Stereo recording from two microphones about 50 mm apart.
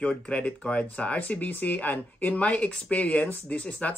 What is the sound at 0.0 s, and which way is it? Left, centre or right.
Speech, left.